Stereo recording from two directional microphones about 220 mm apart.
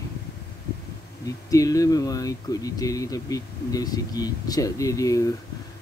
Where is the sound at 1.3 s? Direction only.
15° left (ahead or behind).